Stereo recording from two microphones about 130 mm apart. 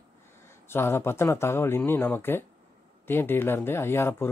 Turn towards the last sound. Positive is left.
turn(degrees=20)  # may be behind; listen again after turning